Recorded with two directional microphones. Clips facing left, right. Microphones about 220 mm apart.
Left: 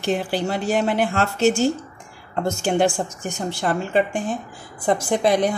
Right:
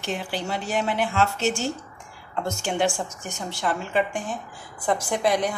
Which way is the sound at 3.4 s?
45° left (ahead or behind).